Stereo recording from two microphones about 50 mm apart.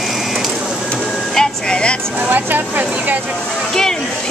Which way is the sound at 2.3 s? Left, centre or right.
Right.